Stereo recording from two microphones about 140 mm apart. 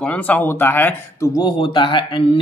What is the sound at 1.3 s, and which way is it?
Speech, 35° left (ahead or behind).